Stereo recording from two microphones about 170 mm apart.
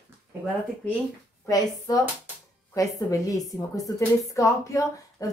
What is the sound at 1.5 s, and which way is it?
A woman's voice, 20° left (ahead or behind).